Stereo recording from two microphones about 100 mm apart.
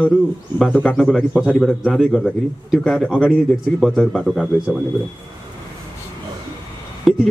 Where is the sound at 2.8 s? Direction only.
10° left (ahead or behind).